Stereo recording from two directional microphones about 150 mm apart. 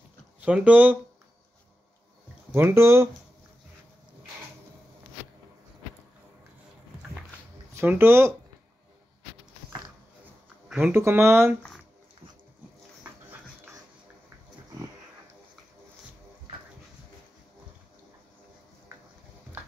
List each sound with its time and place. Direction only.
0.4 s speech: 10° right (ahead or behind)
2.5 s speech: 15° right (ahead or behind)
7.7 s speech: 15° right (ahead or behind)
10.7 s speech: 10° right (ahead or behind)